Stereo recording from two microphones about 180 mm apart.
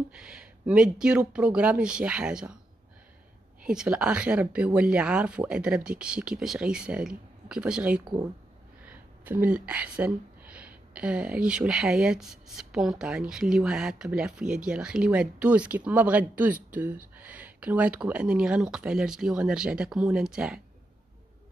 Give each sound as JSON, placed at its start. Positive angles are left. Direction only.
{"t": 0.1, "sound": "speech", "side_deg": -5}
{"t": 3.6, "sound": "speech", "side_deg": -5}
{"t": 8.0, "sound": "speech", "side_deg": -25}
{"t": 8.8, "sound": "speech", "side_deg": -10}